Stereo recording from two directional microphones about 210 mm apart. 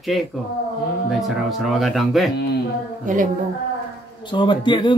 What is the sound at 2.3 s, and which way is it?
Speech, 50° left (ahead or behind).